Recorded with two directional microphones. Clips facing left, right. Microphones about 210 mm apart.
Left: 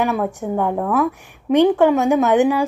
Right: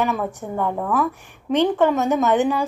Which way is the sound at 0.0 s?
10° left (ahead or behind).